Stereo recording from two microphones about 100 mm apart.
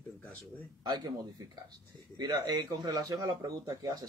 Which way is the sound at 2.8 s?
35° right (ahead or behind).